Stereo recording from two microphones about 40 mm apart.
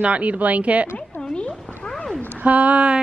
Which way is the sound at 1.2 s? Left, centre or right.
Left.